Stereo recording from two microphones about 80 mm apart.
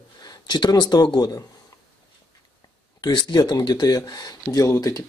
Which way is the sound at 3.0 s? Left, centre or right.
Left.